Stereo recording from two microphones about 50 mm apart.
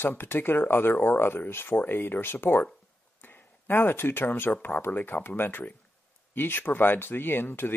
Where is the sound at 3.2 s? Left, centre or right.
Left.